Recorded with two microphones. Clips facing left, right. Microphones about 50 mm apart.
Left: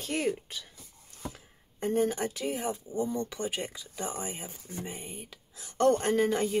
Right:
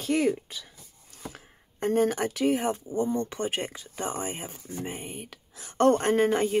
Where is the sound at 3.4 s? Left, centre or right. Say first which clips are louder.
Right 4 dB; right.